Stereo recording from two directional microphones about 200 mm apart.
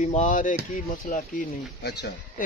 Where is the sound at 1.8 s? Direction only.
55° left (ahead or behind).